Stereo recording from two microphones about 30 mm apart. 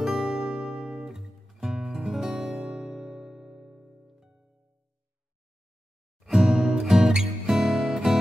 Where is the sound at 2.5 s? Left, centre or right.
Right.